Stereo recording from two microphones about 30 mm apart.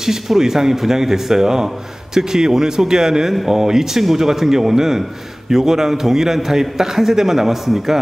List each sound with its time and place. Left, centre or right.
0.4 s a man's voice: centre